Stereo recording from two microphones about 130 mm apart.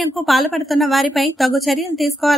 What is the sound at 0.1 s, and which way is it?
A woman's voice, centre (ahead or behind).